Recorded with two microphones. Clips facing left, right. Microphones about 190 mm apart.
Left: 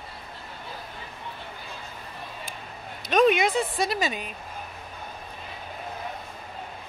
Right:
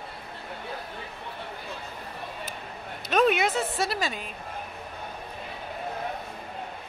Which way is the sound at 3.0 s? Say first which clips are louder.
Left 2 dB; 5° right (ahead or behind).